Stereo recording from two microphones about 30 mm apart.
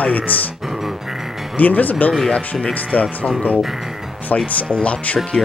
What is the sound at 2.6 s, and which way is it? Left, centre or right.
Speech, left.